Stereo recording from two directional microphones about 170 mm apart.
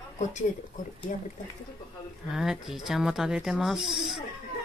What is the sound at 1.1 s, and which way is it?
Speech, 50° left (ahead or behind).